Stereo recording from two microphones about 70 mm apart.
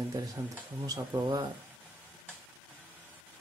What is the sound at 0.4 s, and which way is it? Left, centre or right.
Speech, right.